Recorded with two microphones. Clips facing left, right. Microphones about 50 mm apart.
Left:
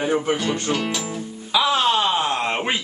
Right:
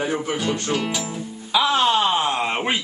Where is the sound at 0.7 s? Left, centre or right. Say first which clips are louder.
Even; centre.